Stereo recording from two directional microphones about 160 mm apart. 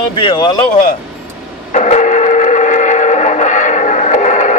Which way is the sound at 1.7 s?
45° left (ahead or behind).